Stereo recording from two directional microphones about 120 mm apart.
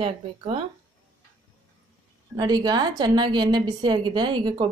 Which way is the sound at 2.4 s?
35° right (ahead or behind).